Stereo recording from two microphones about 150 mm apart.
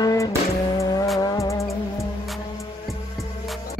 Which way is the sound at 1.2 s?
25° left (ahead or behind).